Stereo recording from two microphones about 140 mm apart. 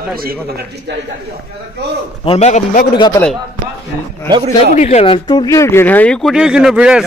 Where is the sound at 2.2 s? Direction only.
45° left (ahead or behind); by 2.9 s 65° left (ahead or behind).